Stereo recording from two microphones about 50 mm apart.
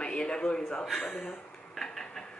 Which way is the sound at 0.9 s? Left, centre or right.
Centre.